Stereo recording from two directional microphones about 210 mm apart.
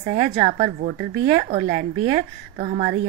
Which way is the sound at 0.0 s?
35° right (ahead or behind).